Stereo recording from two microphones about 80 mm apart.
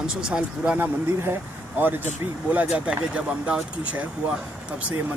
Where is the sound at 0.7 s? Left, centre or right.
Right.